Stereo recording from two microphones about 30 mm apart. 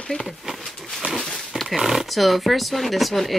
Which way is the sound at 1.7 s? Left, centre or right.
Centre.